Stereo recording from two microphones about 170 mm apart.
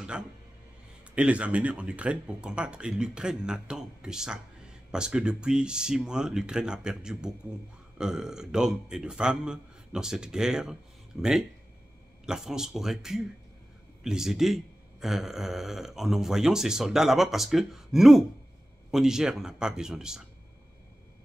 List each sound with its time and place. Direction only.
1.1 s speech: 5° right (ahead or behind)